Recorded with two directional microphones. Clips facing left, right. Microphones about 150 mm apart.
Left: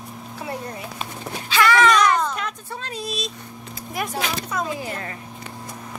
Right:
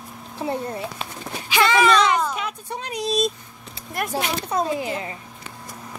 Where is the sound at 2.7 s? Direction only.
15° right (ahead or behind).